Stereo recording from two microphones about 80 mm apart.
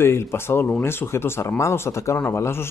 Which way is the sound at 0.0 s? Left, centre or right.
Left.